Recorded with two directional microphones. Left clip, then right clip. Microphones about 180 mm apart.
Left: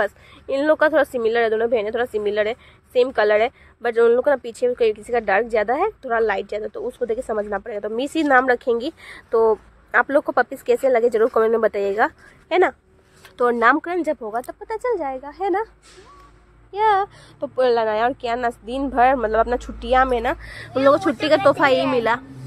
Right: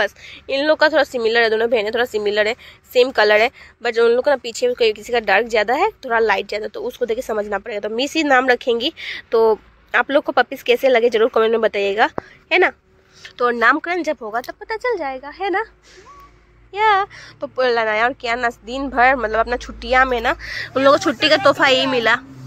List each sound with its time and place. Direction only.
0.0 s speech: 15° left (ahead or behind)
13.2 s a sound: 25° left (ahead or behind)
13.6 s speech: 15° left (ahead or behind)
16.7 s speech: 15° left (ahead or behind)